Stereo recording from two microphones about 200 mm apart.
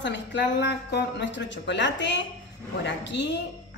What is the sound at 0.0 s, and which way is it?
Speech, 60° left (ahead or behind).